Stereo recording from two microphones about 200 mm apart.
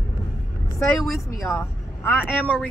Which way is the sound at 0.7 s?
Centre (ahead or behind).